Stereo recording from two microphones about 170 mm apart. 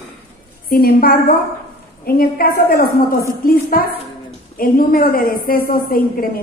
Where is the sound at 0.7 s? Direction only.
60° left (ahead or behind).